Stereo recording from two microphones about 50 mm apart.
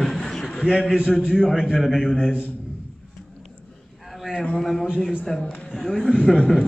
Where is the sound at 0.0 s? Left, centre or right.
Centre.